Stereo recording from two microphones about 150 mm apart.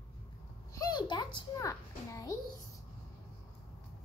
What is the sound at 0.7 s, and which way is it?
A child's voice, 25° left (ahead or behind).